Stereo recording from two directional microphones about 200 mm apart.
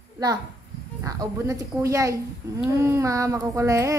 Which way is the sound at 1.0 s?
15° right (ahead or behind).